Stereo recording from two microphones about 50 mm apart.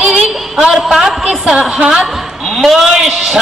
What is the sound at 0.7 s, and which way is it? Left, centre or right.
A man's voice, centre.